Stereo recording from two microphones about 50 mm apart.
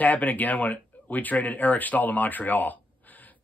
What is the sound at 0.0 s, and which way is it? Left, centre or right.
Speech, left.